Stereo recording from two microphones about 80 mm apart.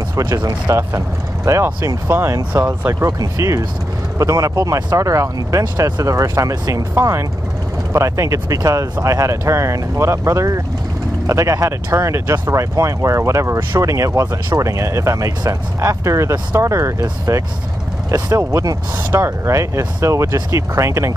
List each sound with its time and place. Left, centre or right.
0.1 s speech: right
2.9 s speech: right
6.0 s speech: right